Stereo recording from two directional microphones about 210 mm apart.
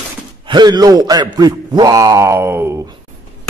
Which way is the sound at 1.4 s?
20° right (ahead or behind).